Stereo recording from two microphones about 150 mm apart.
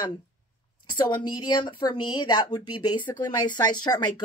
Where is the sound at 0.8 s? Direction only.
30° left (ahead or behind).